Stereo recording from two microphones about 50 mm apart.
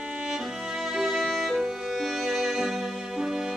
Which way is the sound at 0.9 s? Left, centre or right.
Centre.